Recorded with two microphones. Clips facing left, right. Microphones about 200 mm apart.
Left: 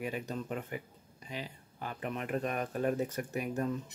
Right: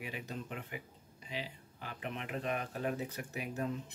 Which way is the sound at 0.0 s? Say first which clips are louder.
Left 6 dB; 45° left (ahead or behind).